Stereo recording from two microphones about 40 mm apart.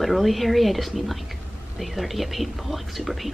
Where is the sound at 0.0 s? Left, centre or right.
Centre.